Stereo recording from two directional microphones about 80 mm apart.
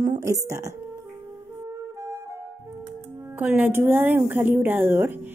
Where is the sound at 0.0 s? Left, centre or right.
Right.